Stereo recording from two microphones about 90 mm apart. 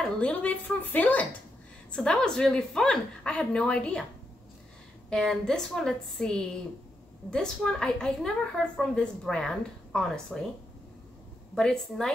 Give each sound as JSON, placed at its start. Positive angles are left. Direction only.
{"t": 0.0, "sound": "a woman's voice", "side_deg": 15}
{"t": 5.1, "sound": "a woman's voice", "side_deg": 5}
{"t": 11.5, "sound": "a woman's voice", "side_deg": 5}